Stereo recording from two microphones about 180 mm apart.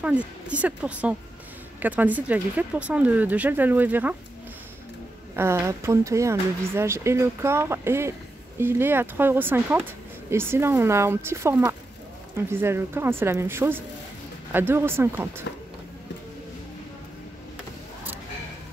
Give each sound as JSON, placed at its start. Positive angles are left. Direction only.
{"t": 0.0, "sound": "speech", "side_deg": -5}
{"t": 5.3, "sound": "speech", "side_deg": -15}